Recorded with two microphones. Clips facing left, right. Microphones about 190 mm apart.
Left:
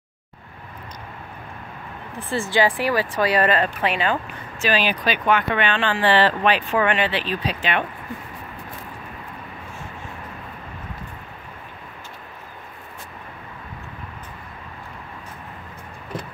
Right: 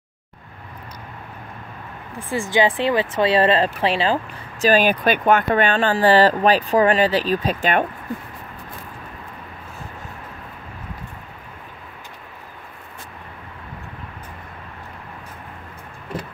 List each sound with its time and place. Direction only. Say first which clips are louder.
2.1 s speech: right 1 dB; 15° right (ahead or behind); by 7.8 s 45° right (ahead or behind)